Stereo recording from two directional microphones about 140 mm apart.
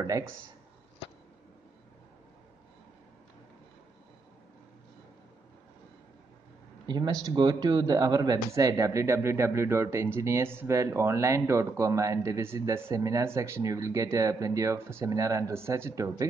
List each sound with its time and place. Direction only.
6.9 s a man's voice: 30° right (ahead or behind)